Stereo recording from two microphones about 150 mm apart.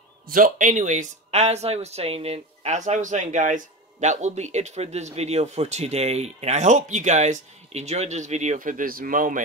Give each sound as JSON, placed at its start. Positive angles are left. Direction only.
{"t": 0.3, "sound": "speech", "side_deg": -65}